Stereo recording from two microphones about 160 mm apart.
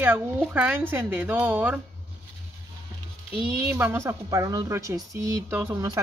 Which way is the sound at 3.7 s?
10° right (ahead or behind).